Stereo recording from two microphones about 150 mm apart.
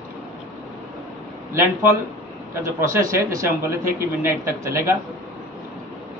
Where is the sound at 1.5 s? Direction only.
15° right (ahead or behind).